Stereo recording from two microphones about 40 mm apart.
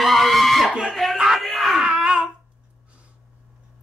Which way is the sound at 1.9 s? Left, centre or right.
Right.